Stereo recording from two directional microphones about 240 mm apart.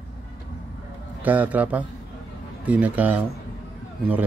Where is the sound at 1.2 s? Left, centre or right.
Centre.